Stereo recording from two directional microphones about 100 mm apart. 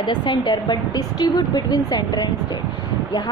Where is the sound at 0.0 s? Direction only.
50° left (ahead or behind).